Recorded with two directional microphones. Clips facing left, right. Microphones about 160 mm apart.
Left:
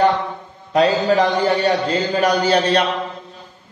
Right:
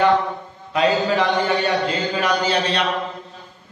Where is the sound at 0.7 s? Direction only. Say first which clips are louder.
Left 3 dB; 35° left (ahead or behind).